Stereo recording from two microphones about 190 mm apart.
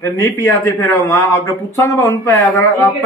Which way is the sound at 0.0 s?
15° left (ahead or behind).